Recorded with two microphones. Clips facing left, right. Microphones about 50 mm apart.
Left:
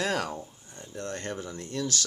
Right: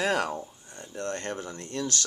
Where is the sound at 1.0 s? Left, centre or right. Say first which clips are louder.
Right 2 dB; right.